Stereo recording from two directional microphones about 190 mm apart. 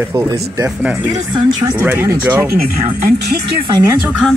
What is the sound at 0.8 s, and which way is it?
Speech, 5° right (ahead or behind).